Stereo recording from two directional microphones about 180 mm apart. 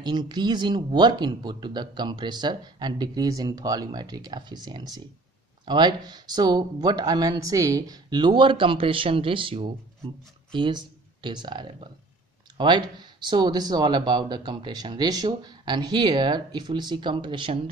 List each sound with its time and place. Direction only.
0.0 s speech: 25° right (ahead or behind)